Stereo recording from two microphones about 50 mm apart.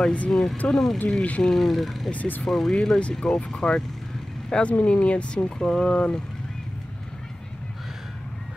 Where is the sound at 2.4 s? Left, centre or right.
Centre.